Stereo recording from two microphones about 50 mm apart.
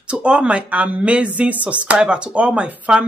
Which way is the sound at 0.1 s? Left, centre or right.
Right.